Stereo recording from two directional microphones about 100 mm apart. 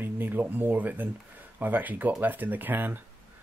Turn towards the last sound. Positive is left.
turn(degrees=-20)  # may be behind; listen again after turning